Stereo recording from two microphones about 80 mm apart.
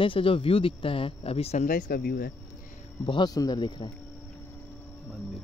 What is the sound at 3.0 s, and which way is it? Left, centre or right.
Speech, left.